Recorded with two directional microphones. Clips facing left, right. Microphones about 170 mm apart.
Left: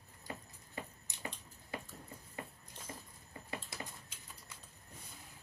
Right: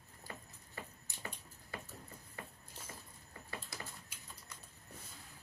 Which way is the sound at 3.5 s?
20° left (ahead or behind).